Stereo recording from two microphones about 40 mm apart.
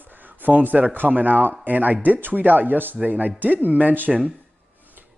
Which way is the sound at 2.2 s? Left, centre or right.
Right.